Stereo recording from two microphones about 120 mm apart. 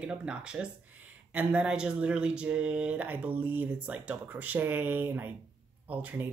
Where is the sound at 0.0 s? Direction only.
10° right (ahead or behind).